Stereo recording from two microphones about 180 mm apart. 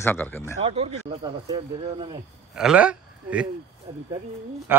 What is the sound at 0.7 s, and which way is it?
Speech, 30° right (ahead or behind).